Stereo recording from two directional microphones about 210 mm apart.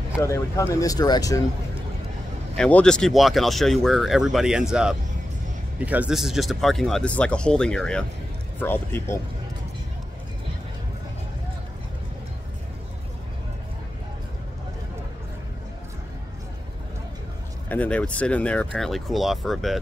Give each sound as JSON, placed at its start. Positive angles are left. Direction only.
{"t": 0.2, "sound": "speech", "side_deg": 15}
{"t": 2.5, "sound": "speech", "side_deg": 5}
{"t": 17.6, "sound": "speech", "side_deg": 5}